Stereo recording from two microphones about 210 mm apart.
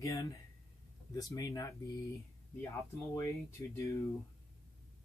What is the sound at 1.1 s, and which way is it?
Speech, 15° left (ahead or behind).